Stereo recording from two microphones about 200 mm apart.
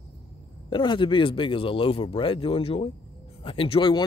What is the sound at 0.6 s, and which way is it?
Speech, 25° left (ahead or behind).